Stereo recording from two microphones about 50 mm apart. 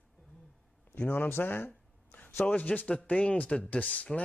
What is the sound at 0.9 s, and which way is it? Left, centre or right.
Speech, left.